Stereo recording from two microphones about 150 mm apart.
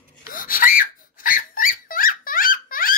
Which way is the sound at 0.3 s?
70° left (ahead or behind).